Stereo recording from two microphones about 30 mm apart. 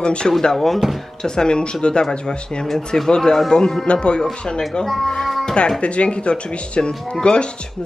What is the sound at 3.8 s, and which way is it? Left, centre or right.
Speech, left.